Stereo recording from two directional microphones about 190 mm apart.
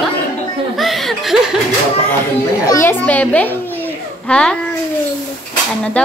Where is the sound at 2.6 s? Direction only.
15° left (ahead or behind).